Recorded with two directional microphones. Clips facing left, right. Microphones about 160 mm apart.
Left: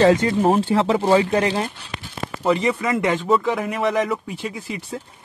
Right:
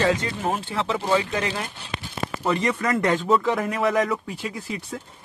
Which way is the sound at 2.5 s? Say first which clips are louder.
Left 4 dB; 5° left (ahead or behind).